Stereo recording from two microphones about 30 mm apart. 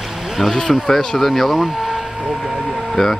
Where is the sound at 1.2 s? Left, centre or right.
Centre.